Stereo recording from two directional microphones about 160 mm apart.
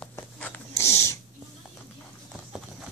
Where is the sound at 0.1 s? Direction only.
15° left (ahead or behind).